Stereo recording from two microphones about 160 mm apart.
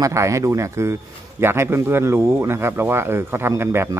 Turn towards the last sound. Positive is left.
turn(degrees=-15)  # may be behind; listen again after turning